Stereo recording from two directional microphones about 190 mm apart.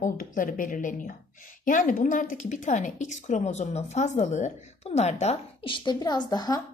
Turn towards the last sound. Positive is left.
turn(degrees=20)  # may be behind; listen again after turning